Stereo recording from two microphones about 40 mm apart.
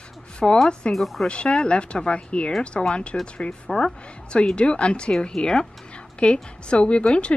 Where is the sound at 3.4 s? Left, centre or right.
Centre.